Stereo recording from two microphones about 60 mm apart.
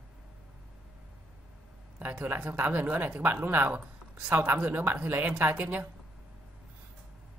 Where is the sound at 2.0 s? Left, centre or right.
Right.